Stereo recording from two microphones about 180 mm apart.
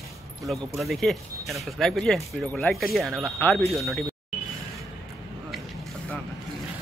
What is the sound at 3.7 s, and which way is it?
Speech, centre (ahead or behind).